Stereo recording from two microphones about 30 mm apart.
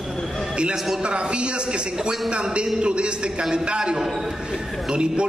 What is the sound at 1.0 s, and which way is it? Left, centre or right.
A man's voice, right.